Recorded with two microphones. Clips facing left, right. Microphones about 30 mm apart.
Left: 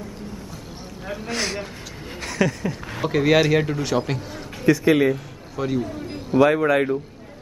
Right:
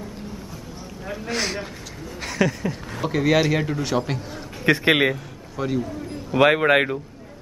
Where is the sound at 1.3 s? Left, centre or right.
Centre.